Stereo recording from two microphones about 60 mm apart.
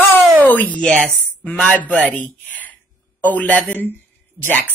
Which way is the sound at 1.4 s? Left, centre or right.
Left.